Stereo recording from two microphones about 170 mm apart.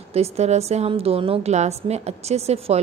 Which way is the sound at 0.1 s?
40° right (ahead or behind).